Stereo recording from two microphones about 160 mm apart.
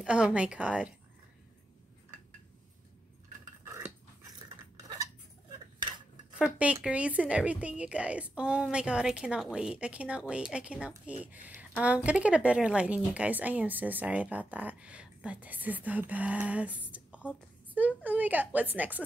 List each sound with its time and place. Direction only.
0.0 s speech: 5° right (ahead or behind)
3.6 s cutlery: 15° right (ahead or behind)
6.3 s speech: 10° right (ahead or behind)